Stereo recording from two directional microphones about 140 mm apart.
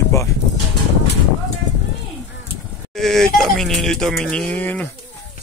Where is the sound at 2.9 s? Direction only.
Centre (ahead or behind).